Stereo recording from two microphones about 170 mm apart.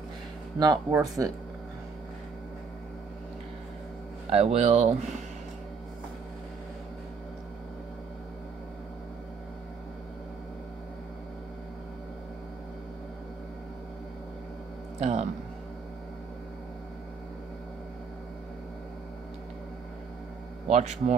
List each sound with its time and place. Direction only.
0.6 s speech: 20° right (ahead or behind)
4.3 s speech: 35° right (ahead or behind)
15.0 s speech: 40° right (ahead or behind)
20.6 s speech: 40° right (ahead or behind)